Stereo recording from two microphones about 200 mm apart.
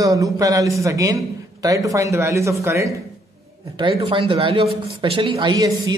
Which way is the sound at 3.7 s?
25° right (ahead or behind).